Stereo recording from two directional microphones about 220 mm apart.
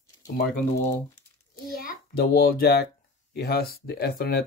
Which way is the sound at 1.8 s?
40° left (ahead or behind).